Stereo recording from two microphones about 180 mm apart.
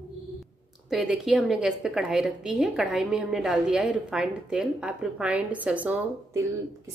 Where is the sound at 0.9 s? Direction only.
Centre (ahead or behind).